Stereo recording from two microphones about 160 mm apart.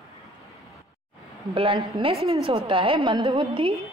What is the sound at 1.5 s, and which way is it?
A woman's voice, 35° right (ahead or behind).